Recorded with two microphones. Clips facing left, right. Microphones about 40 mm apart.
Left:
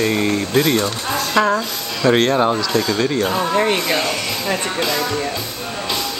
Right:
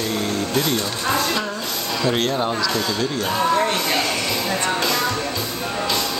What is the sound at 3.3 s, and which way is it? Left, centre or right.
Speech, left.